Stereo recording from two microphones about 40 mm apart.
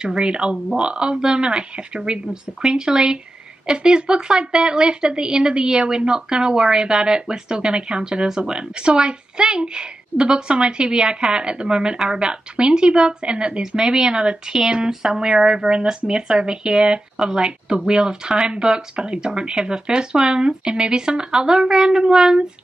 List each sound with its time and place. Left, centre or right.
0.0 s a woman's voice: right